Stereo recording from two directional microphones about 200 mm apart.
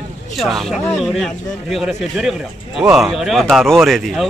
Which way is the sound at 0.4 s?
Centre (ahead or behind).